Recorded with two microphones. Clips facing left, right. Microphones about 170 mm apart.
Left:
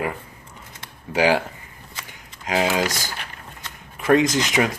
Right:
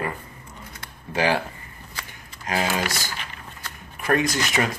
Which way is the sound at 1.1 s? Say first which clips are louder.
Left 4 dB; 15° left (ahead or behind).